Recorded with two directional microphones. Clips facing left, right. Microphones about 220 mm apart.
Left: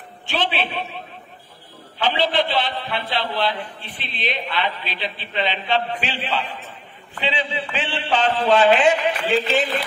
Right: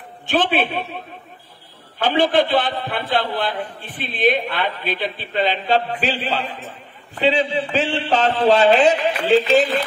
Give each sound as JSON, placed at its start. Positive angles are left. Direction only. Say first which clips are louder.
{"t": 0.3, "sound": "a man's voice", "louder": "right 5 dB", "side_deg": -50}
{"t": 2.0, "sound": "a man's voice", "louder": "right 4 dB", "side_deg": -50}